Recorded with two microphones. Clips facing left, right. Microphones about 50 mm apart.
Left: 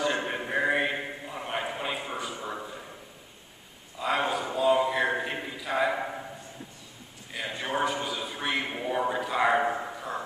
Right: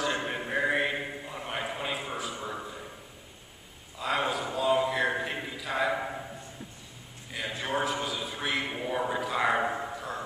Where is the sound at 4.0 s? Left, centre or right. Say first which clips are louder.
Left 2 dB; centre.